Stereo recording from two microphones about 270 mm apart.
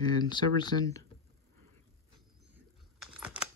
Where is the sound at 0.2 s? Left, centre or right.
Centre.